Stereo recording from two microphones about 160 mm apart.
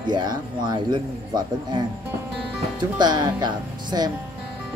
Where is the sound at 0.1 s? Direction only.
25° right (ahead or behind).